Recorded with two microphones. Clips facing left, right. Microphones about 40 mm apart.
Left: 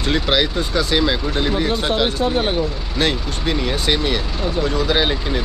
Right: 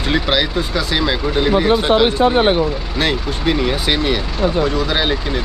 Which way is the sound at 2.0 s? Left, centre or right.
Right.